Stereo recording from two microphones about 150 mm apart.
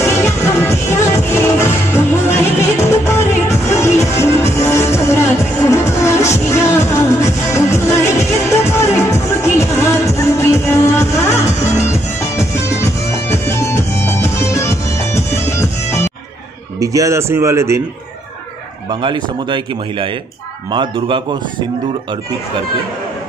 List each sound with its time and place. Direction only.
0.0 s music: 15° left (ahead or behind)
16.8 s a man's voice: 20° right (ahead or behind)
18.9 s speech: 30° right (ahead or behind)